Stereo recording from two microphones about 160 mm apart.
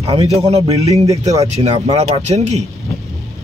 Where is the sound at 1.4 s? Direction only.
40° right (ahead or behind).